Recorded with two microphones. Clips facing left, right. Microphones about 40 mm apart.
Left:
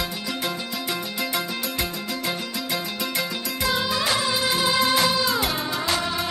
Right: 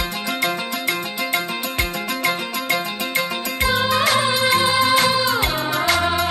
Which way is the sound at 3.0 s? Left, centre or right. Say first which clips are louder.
Right 4 dB; right.